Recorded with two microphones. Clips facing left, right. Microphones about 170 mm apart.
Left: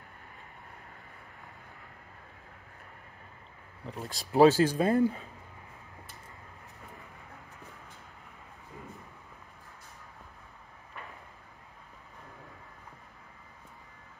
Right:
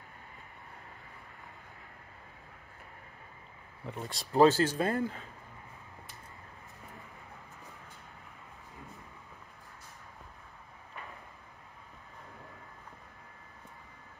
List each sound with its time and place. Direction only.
3.8 s speech: centre (ahead or behind)
4.4 s speech: 15° left (ahead or behind)